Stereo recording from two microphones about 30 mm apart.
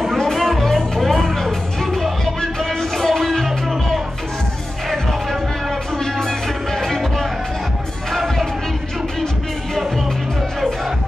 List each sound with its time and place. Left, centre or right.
0.0 s music: centre
5.9 s music: centre